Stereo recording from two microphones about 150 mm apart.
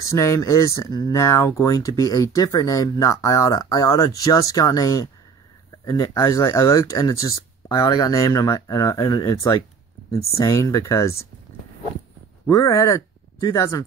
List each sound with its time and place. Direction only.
0.0 s speech: 20° left (ahead or behind)
12.4 s speech: 25° left (ahead or behind)